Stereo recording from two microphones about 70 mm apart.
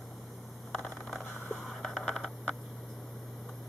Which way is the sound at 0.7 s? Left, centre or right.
Centre.